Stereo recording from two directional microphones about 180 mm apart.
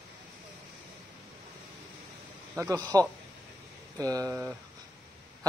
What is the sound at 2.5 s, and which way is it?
A man's voice, 20° right (ahead or behind).